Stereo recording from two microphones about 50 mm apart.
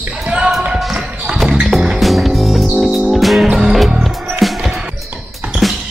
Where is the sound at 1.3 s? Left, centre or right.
Centre.